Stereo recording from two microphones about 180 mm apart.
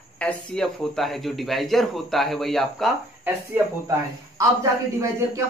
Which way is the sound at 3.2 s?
15° right (ahead or behind).